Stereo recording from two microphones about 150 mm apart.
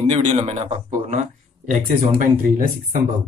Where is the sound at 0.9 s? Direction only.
55° right (ahead or behind).